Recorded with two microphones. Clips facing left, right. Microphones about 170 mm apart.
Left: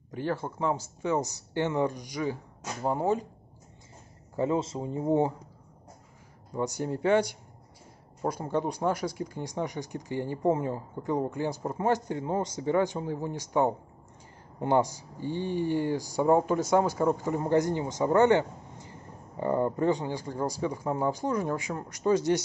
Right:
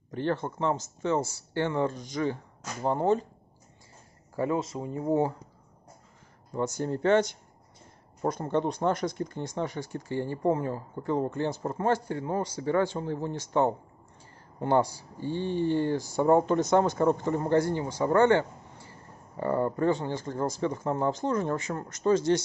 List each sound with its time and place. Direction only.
0.1 s speech: 10° left (ahead or behind)
4.4 s speech: 25° left (ahead or behind)
6.5 s speech: 15° left (ahead or behind)